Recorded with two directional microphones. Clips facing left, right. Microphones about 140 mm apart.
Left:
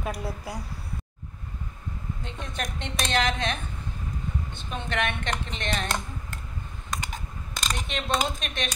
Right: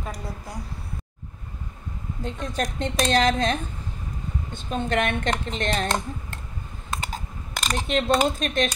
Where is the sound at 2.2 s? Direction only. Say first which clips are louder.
Right 8 dB; 40° right (ahead or behind).